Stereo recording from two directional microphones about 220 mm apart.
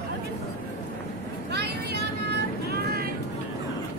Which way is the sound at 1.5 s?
50° right (ahead or behind).